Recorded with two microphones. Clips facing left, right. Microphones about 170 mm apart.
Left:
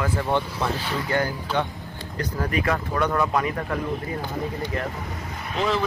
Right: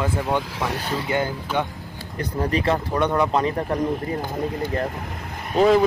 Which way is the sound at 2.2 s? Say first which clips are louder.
Right 3 dB; 30° right (ahead or behind).